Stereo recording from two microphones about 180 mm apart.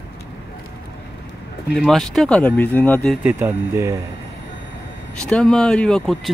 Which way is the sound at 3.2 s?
10° right (ahead or behind).